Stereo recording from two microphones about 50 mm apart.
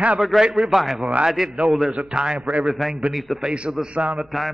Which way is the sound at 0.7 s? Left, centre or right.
Centre.